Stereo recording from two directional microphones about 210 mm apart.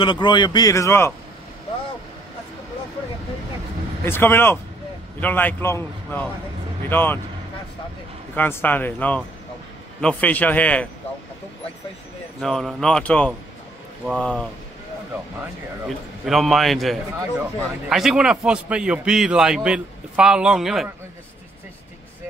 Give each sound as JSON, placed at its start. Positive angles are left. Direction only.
{"t": 0.0, "sound": "speech", "side_deg": 20}
{"t": 4.0, "sound": "a man's voice", "side_deg": 10}
{"t": 8.4, "sound": "a man's voice", "side_deg": 10}
{"t": 12.4, "sound": "a man's voice", "side_deg": 0}
{"t": 15.9, "sound": "a man's voice", "side_deg": 0}